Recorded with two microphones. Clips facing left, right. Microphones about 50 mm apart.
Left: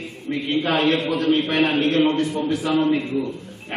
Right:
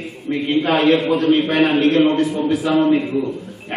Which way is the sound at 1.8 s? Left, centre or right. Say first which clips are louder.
Right 5 dB; right.